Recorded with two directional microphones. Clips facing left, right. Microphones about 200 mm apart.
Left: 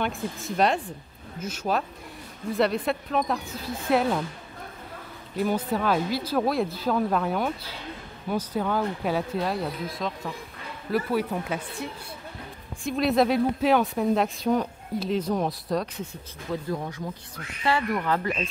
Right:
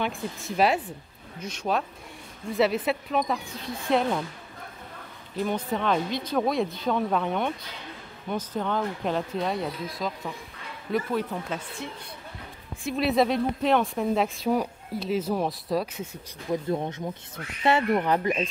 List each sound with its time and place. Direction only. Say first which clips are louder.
0.0 s speech: left 1 dB; centre (ahead or behind)
5.4 s a woman's voice: left 2 dB; 5° left (ahead or behind)
12.8 s speech: left 1 dB; centre (ahead or behind)
16.4 s speech: right 3 dB; 25° right (ahead or behind)